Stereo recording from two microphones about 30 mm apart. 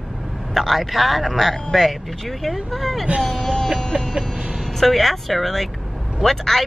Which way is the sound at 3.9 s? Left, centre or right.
Right.